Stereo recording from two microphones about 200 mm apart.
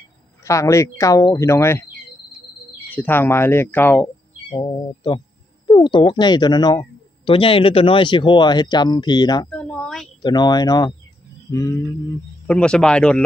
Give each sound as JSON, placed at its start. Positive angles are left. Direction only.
{"t": 0.4, "sound": "speech", "side_deg": 15}
{"t": 2.9, "sound": "speech", "side_deg": 10}
{"t": 4.6, "sound": "speech", "side_deg": 20}
{"t": 9.5, "sound": "speech", "side_deg": 5}
{"t": 10.2, "sound": "speech", "side_deg": 20}